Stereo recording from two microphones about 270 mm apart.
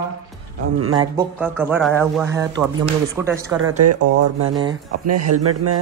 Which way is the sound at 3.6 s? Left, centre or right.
Right.